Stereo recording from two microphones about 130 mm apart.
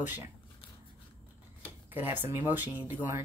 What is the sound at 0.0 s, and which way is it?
Speech, 15° right (ahead or behind).